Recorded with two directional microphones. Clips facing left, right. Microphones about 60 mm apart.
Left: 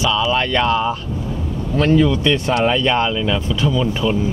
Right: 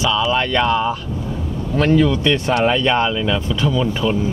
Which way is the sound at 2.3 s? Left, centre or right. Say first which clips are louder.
Even; centre.